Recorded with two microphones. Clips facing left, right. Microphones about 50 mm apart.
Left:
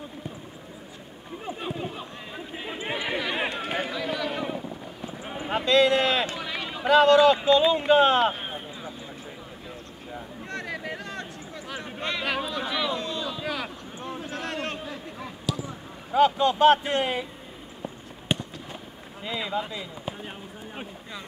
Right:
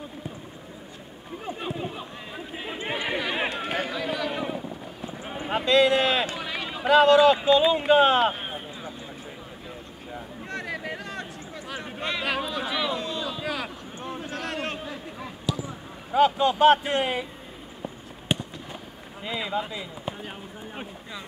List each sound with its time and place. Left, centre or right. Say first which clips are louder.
1.6 s run: even; centre
5.7 s run: even; centre
6.9 s speech: even; centre
10.1 s a sound: right 1 dB; centre
15.1 s basketball bounce: right 1 dB; centre
16.2 s a man's voice: even; centre
17.8 s fireworks: even; centre
19.2 s a man's voice: right 1 dB; centre
20.1 s a sound: right 1 dB; centre